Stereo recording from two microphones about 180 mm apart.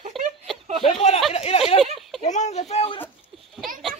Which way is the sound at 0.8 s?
35° left (ahead or behind).